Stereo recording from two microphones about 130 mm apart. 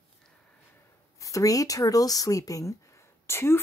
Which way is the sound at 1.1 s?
25° left (ahead or behind).